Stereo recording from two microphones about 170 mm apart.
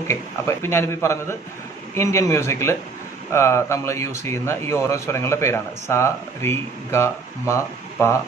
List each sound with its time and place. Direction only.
0.1 s speech: 15° left (ahead or behind)